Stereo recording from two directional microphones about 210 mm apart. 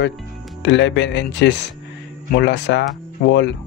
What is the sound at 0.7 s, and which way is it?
A man's voice, 60° left (ahead or behind).